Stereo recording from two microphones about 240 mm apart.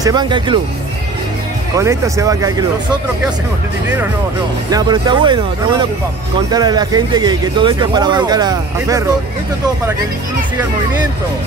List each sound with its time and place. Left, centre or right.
0.0 s speech: centre
1.8 s speech: centre
4.6 s speech: centre